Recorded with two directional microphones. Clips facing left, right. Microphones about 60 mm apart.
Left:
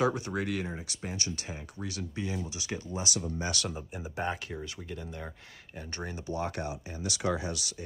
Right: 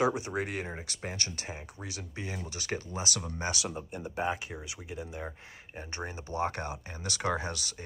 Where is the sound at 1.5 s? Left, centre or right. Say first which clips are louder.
Left 3 dB; right.